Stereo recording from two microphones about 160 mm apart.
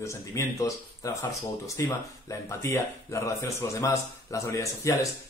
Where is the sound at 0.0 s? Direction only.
20° left (ahead or behind).